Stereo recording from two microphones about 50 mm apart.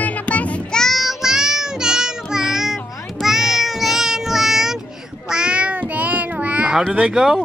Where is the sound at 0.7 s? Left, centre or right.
Centre.